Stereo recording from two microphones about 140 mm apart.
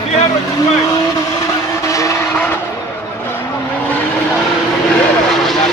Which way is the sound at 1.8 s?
20° left (ahead or behind).